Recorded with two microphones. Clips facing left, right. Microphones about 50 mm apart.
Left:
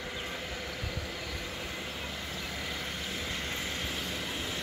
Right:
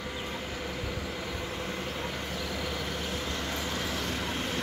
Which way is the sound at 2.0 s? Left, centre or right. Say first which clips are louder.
Right 4 dB; right.